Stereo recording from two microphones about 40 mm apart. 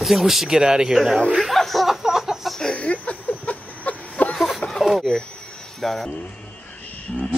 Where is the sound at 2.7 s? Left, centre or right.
Left.